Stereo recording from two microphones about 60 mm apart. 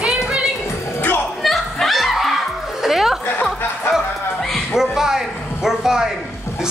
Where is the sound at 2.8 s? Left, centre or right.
Centre.